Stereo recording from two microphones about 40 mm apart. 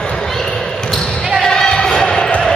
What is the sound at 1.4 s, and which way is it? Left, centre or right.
Basketball bounce, centre.